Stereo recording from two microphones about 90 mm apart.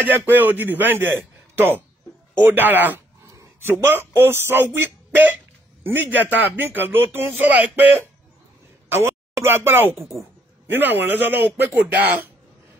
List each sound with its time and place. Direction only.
0.0 s speech: 20° right (ahead or behind)
8.9 s a sound: 30° right (ahead or behind)
9.9 s a woman's voice: centre (ahead or behind)
10.7 s speech: 20° right (ahead or behind)